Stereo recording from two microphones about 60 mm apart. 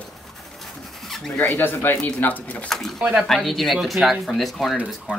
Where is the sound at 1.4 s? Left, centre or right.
Left.